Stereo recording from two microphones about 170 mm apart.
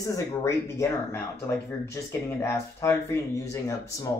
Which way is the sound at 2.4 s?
15° left (ahead or behind).